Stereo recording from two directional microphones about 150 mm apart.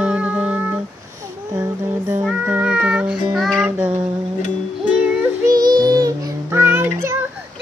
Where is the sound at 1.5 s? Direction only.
20° right (ahead or behind).